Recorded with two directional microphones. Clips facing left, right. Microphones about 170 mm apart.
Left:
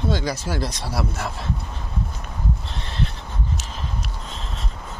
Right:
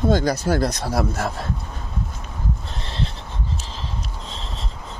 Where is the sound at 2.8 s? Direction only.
30° right (ahead or behind).